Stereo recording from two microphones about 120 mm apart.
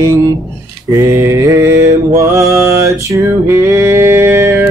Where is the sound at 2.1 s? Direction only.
25° right (ahead or behind).